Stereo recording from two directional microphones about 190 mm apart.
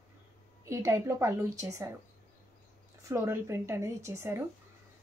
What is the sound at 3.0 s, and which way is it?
A woman's voice, 15° right (ahead or behind).